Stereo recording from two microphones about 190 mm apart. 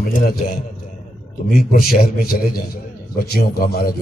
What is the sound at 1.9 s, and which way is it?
A man's voice, 50° left (ahead or behind).